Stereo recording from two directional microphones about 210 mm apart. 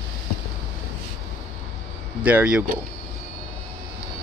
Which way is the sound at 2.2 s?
5° right (ahead or behind).